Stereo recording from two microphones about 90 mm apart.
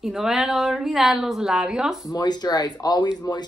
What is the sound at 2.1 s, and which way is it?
Speech, 50° left (ahead or behind).